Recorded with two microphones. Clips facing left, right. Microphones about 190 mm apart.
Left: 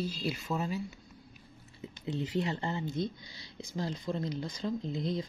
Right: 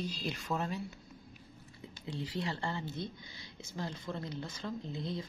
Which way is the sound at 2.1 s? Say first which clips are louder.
Left 5 dB; 20° left (ahead or behind).